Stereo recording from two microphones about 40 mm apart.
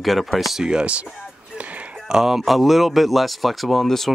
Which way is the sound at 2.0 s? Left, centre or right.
Centre.